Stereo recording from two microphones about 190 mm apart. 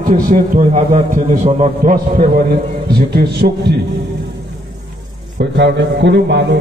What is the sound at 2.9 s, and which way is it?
Speech, 60° right (ahead or behind).